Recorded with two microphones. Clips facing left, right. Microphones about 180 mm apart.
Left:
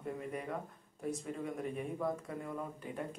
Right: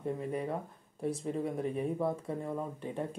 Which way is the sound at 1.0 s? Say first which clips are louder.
Right 5 dB; 35° right (ahead or behind).